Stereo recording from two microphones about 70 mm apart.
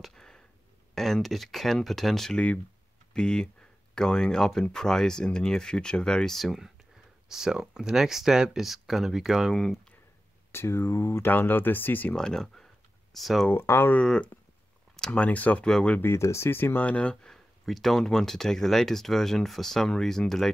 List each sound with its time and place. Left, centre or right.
0.0 s sniff: centre
0.9 s speech: centre
2.3 s speech: left
3.1 s speech: centre
10.5 s speech: left
11.2 s speech: left
12.2 s speech: centre
13.5 s speech: left
13.9 s speech: centre
15.6 s speech: centre
16.0 s speech: left; by 20.5 s centre